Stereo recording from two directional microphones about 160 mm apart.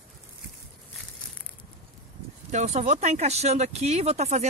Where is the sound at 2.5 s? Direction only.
45° right (ahead or behind).